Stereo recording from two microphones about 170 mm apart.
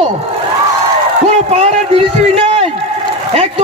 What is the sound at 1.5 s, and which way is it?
A man's voice, 40° right (ahead or behind).